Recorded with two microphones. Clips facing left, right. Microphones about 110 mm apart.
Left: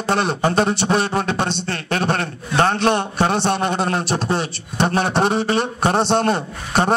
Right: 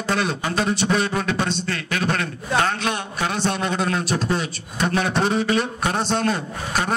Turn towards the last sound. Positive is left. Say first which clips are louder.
# left 5 dB
turn(degrees=30)  # may be behind; listen again after turning